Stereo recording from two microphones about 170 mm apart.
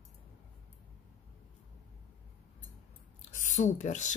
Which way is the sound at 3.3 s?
45° left (ahead or behind).